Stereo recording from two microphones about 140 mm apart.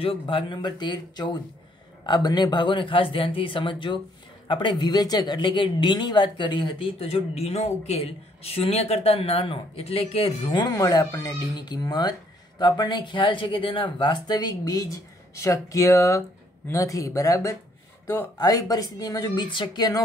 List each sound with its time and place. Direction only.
0.0 s speech: 40° left (ahead or behind)
10.6 s speech: 25° left (ahead or behind)
18.4 s speech: 25° left (ahead or behind)